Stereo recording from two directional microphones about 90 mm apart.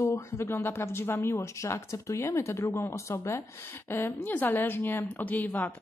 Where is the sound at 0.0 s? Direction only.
30° left (ahead or behind).